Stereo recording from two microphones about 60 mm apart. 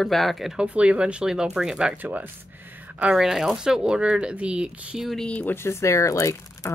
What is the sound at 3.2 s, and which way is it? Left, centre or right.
Speech, centre.